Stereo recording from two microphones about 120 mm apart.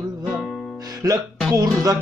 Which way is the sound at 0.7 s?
30° right (ahead or behind).